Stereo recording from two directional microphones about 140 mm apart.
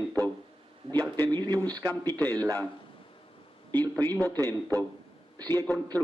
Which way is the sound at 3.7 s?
15° left (ahead or behind).